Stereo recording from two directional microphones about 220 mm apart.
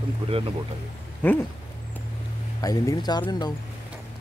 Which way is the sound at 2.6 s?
15° left (ahead or behind).